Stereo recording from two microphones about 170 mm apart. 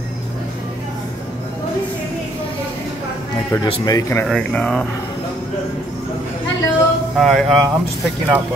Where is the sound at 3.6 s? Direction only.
20° left (ahead or behind).